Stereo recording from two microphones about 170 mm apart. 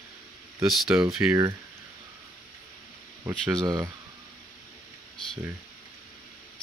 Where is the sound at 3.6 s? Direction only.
25° right (ahead or behind).